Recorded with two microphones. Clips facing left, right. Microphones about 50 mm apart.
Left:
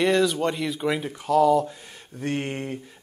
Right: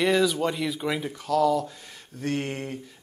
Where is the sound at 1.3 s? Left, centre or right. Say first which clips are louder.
Left 4 dB; centre.